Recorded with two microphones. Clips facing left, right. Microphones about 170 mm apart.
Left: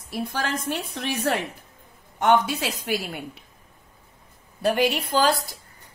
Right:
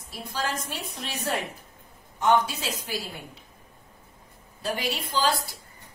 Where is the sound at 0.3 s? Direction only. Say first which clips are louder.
Left 1 dB; 60° left (ahead or behind).